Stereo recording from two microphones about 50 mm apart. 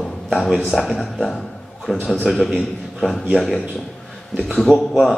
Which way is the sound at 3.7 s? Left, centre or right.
Centre.